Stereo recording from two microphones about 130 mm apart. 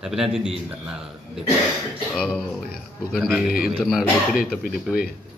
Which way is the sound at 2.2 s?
5° left (ahead or behind).